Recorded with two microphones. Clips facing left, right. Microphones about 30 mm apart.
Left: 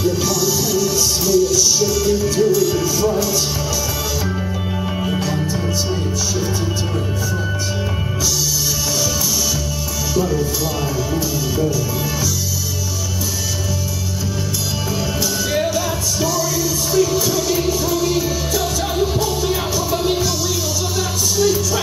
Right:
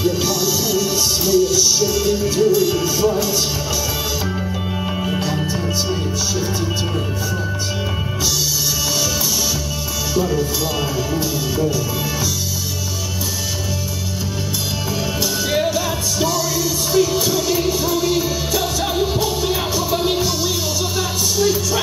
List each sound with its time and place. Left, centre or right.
0.0 s music: right
10.1 s music: centre
15.5 s music: centre